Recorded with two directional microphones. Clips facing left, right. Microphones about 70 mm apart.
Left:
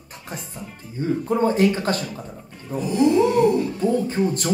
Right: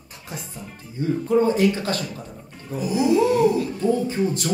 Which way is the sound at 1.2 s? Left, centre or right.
Left.